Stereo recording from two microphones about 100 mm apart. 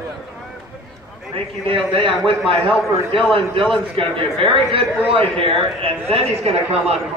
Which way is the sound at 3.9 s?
60° right (ahead or behind).